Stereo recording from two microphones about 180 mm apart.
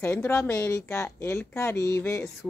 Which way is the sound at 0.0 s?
15° left (ahead or behind).